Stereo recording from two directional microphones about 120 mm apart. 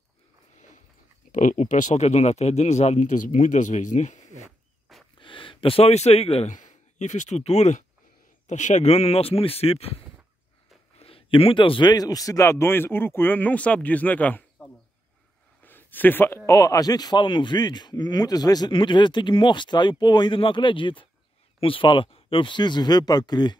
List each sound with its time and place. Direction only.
1.3 s speech: 90° left
4.9 s a sound: centre (ahead or behind)
5.2 s speech: 45° left (ahead or behind); by 7.8 s 70° left (ahead or behind)
8.5 s speech: 80° left; by 10.0 s 55° left (ahead or behind)
11.0 s a sound: 50° left (ahead or behind)
11.9 s speech: 30° left (ahead or behind)